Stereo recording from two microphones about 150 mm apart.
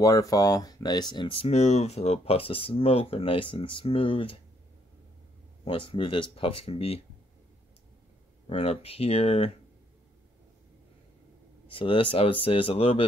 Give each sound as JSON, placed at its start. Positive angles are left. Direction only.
{"t": 0.0, "sound": "speech", "side_deg": 25}
{"t": 5.7, "sound": "speech", "side_deg": 35}
{"t": 8.5, "sound": "speech", "side_deg": 40}
{"t": 11.6, "sound": "speech", "side_deg": 35}